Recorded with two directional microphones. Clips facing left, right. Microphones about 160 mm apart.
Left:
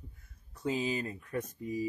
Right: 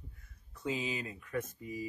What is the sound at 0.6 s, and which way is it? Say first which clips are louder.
Speech: left 4 dB; 40° left (ahead or behind).